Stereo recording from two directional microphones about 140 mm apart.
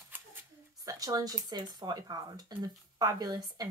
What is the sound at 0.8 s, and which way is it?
Speech, 25° right (ahead or behind).